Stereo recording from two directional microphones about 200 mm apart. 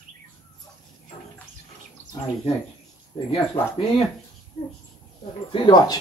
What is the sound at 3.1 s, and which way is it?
Speech, 30° left (ahead or behind).